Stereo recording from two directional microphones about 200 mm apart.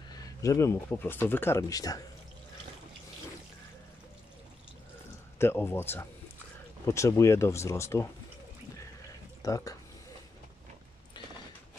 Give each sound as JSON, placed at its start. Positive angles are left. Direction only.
{"t": 0.1, "sound": "speech", "side_deg": 15}
{"t": 5.4, "sound": "speech", "side_deg": 10}
{"t": 9.4, "sound": "speech", "side_deg": 15}